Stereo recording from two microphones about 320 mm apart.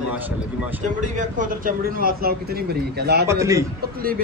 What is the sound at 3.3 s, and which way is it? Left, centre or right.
Speech, centre.